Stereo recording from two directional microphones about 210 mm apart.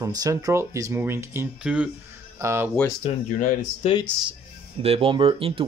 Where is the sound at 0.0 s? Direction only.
15° right (ahead or behind).